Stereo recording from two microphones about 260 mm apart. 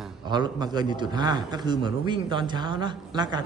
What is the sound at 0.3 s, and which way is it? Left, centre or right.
A man's voice, centre.